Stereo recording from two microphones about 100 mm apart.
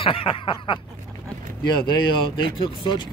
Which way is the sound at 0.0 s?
60° left (ahead or behind).